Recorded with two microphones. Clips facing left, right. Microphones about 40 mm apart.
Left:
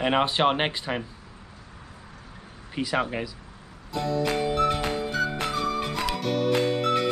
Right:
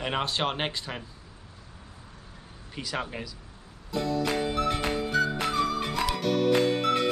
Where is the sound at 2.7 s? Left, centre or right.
Centre.